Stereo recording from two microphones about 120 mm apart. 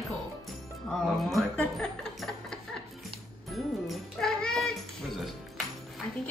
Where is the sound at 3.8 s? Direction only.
Centre (ahead or behind).